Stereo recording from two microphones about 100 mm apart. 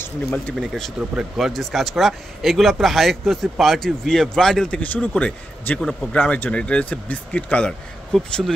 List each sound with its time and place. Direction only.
0.6 s speech: 5° left (ahead or behind)